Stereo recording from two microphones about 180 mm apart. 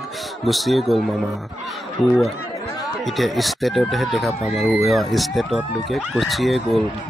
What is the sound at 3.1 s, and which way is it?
Speech, centre (ahead or behind).